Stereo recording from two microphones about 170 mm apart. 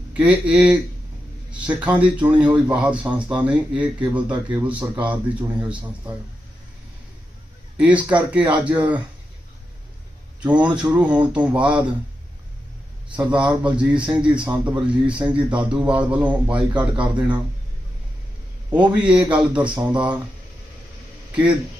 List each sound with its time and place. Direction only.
0.1 s speech: 10° right (ahead or behind)
7.8 s speech: 10° right (ahead or behind)
10.4 s speech: 10° right (ahead or behind)
13.2 s speech: 5° right (ahead or behind)
14.8 s speech: 30° right (ahead or behind)
15.7 s speech: 5° right (ahead or behind)
18.7 s speech: 5° right (ahead or behind)